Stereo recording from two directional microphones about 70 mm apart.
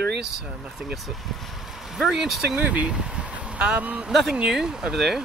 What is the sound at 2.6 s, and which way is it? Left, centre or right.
Speech, centre.